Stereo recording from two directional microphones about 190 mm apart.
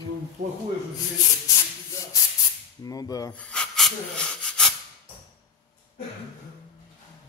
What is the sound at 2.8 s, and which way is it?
Speech, 20° left (ahead or behind).